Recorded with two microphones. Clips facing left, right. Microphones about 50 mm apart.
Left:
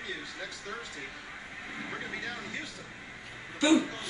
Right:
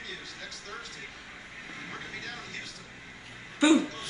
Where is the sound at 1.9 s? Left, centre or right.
Centre.